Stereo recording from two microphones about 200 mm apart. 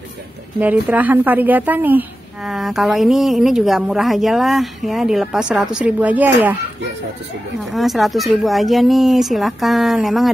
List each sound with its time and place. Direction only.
0.6 s a woman's voice: 10° right (ahead or behind)
7.7 s a woman's voice: centre (ahead or behind)